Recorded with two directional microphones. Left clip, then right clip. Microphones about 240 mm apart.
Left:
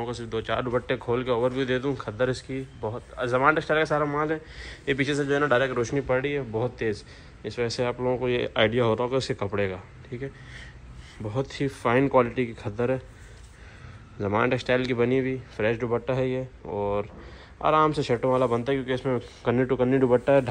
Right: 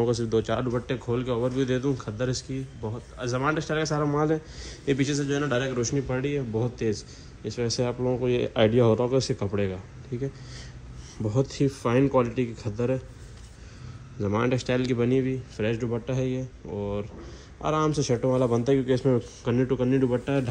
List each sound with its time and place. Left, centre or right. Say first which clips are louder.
0.0 s a man's voice: right 6 dB; right
11.2 s a man's voice: right 3 dB; centre
14.2 s a man's voice: left 2 dB; centre